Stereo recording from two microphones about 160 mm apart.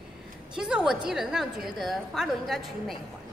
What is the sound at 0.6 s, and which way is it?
A woman's voice, 5° right (ahead or behind).